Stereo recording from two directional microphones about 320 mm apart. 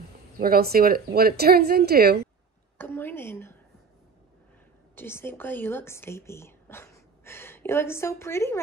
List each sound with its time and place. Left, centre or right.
0.4 s a woman's voice: right
2.8 s a woman's voice: centre
4.9 s speech: centre